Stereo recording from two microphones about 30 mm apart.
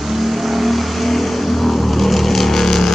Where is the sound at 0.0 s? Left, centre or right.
Centre.